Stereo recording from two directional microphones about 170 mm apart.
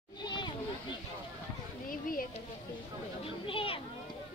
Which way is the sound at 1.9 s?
55° left (ahead or behind).